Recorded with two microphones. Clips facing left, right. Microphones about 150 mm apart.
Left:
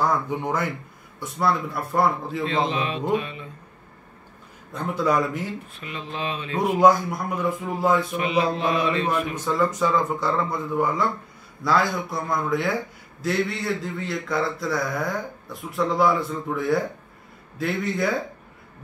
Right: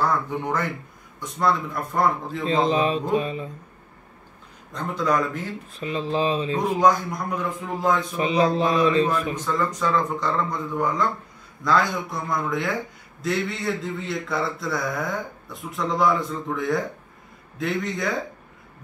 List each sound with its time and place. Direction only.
0.0 s speech: 10° left (ahead or behind)
2.4 s mantra: 35° right (ahead or behind)
4.7 s speech: 10° left (ahead or behind)
5.8 s mantra: 35° right (ahead or behind)
6.6 s speech: 10° left (ahead or behind)
8.1 s mantra: 35° right (ahead or behind)
9.3 s a man's voice: 10° left (ahead or behind)